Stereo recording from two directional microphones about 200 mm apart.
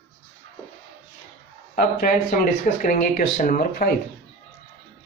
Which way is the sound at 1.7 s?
45° left (ahead or behind).